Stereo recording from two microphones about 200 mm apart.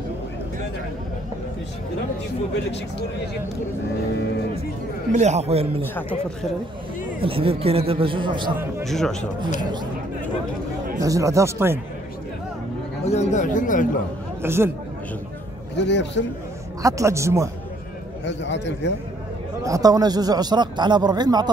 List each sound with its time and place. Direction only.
5.1 s a man's voice: 35° right (ahead or behind)
7.2 s a man's voice: 25° right (ahead or behind)
8.8 s speech: centre (ahead or behind)
11.0 s speech: 15° right (ahead or behind)
13.0 s speech: 35° left (ahead or behind)
14.4 s speech: 10° right (ahead or behind)
15.7 s a man's voice: 60° left (ahead or behind)
16.8 s speech: 15° right (ahead or behind)
18.2 s a man's voice: 60° left (ahead or behind)
19.6 s a man's voice: 15° right (ahead or behind)